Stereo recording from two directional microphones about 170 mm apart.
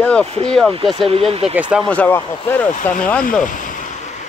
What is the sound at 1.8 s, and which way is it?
Speech, 10° left (ahead or behind).